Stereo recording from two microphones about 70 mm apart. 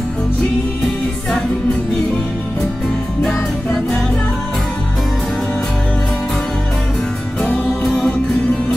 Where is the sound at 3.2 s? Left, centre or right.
Centre.